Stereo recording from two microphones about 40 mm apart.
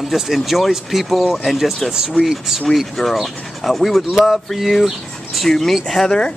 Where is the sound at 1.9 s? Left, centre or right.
Centre.